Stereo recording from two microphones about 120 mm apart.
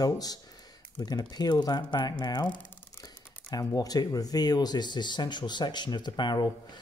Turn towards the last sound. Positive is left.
turn(degrees=40)  # may be behind; listen again after turning